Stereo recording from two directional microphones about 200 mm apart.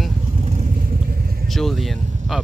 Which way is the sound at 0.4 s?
35° right (ahead or behind).